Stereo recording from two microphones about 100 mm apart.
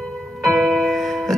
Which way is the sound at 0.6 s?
Centre (ahead or behind).